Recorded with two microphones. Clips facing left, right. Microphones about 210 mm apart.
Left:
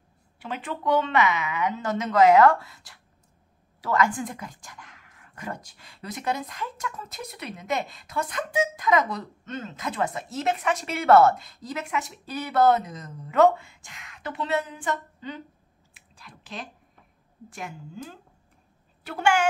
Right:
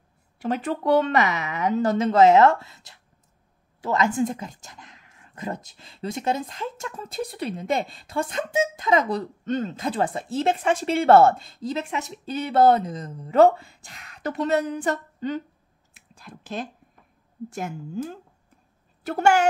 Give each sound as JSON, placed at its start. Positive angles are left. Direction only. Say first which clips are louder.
{"t": 0.4, "sound": "speech", "louder": "right 7 dB", "side_deg": -40}
{"t": 15.9, "sound": "a sound", "louder": "right 6 dB", "side_deg": -45}
{"t": 17.6, "sound": "a woman's voice", "louder": "right 7 dB", "side_deg": -45}
{"t": 19.0, "sound": "speech", "louder": "right 4 dB", "side_deg": -40}